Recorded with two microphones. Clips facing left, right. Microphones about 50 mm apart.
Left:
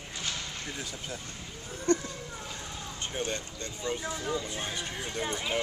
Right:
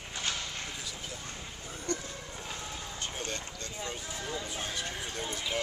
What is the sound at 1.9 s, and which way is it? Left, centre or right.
Speech, left.